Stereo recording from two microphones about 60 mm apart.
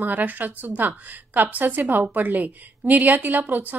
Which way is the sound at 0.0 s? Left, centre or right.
Right.